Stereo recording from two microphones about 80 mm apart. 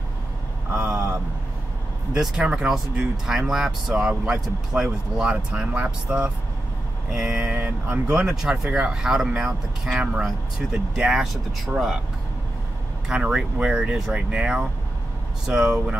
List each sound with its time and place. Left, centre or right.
0.7 s vehicle: centre
2.1 s speech: centre
13.1 s speech: centre